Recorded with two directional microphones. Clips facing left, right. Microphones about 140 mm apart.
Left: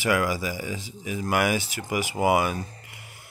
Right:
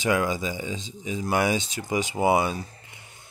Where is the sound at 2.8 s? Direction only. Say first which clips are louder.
Left 2 dB; 20° right (ahead or behind).